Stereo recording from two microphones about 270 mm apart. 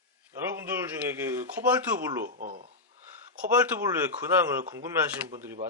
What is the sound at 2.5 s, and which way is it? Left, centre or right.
Snort, right.